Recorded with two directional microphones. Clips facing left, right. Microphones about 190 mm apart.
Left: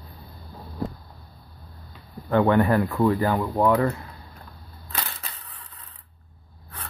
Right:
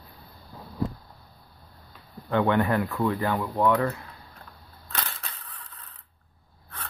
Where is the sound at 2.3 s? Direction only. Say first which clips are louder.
Left 4 dB; 40° left (ahead or behind).